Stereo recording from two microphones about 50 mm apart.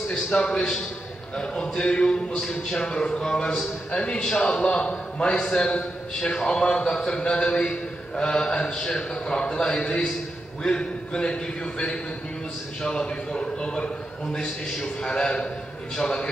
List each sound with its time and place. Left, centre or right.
0.1 s a man's voice: centre
4.2 s a man's voice: centre
4.5 s a man's voice: centre